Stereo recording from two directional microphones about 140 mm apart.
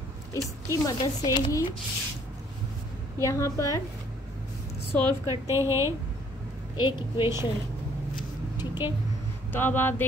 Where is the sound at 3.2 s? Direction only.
20° left (ahead or behind).